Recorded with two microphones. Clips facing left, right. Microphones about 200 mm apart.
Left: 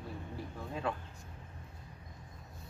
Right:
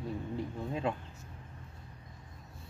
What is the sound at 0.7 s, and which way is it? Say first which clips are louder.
Speech: right 2 dB; 20° right (ahead or behind).